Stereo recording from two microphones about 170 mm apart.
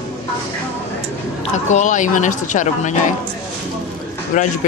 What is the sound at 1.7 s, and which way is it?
A woman's voice, 45° left (ahead or behind).